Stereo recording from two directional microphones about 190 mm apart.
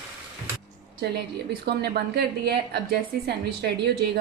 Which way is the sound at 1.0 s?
60° right (ahead or behind).